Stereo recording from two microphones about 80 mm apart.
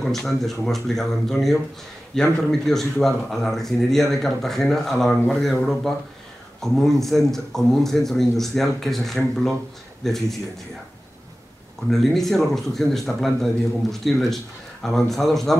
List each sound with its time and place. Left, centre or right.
0.0 s a man's voice: centre
11.9 s a man's voice: centre